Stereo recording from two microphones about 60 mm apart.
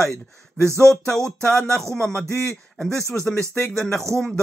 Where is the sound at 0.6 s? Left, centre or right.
Right.